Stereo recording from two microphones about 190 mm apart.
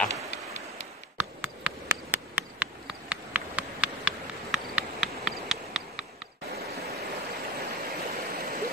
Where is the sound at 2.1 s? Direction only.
10° right (ahead or behind).